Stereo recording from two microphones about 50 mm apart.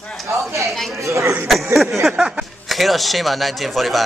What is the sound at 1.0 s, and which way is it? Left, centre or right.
Speech, right.